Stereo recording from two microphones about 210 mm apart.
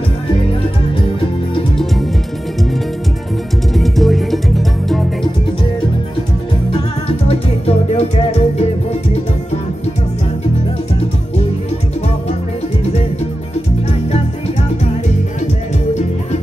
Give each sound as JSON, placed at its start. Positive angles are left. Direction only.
{"t": 3.7, "sound": "music", "side_deg": 0}
{"t": 6.7, "sound": "music", "side_deg": 30}